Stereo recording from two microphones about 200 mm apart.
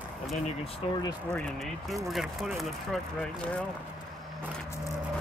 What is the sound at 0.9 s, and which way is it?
Speech, 20° left (ahead or behind).